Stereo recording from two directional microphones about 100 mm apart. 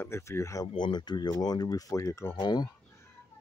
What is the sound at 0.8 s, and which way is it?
Speech, 45° left (ahead or behind).